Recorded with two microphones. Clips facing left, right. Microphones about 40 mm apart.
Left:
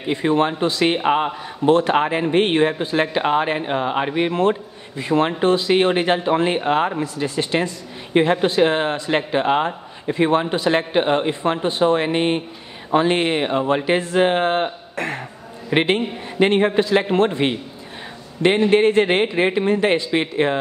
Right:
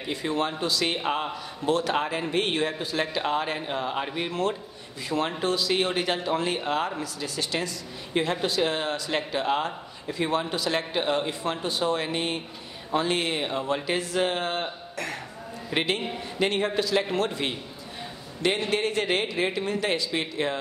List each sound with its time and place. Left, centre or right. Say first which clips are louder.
0.0 s a man's voice: left 9 dB; left